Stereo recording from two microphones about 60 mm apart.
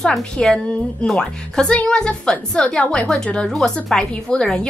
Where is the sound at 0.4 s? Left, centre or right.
Centre.